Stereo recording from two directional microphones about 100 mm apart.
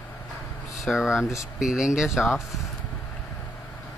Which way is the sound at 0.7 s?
5° right (ahead or behind).